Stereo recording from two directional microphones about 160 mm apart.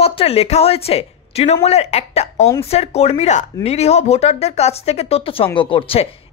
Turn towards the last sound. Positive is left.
turn(degrees=35)  # may be behind; listen again after turning